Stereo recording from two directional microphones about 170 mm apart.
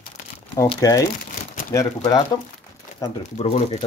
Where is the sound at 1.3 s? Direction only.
50° left (ahead or behind).